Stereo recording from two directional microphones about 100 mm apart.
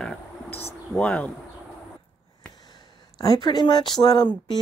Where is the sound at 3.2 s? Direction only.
45° left (ahead or behind).